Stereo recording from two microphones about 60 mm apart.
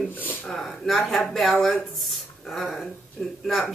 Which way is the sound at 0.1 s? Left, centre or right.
Left.